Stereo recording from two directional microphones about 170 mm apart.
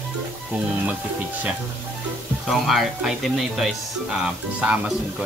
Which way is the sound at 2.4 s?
Centre (ahead or behind).